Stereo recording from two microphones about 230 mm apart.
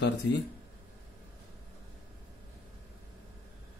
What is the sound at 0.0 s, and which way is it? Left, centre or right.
Speech, left.